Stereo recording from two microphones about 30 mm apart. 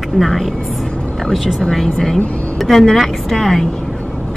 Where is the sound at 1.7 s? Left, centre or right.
Centre.